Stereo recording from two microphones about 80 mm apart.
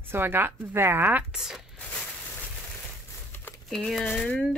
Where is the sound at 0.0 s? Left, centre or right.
Right.